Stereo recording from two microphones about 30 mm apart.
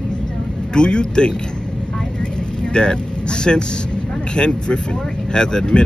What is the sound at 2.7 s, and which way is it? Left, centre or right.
Speech, left.